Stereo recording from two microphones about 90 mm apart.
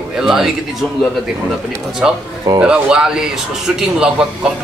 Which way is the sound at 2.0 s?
10° right (ahead or behind).